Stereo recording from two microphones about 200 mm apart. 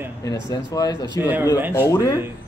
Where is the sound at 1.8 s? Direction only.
15° left (ahead or behind).